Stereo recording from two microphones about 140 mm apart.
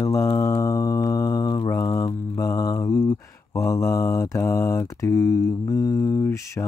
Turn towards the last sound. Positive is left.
turn(degrees=20)  # may be behind; listen again after turning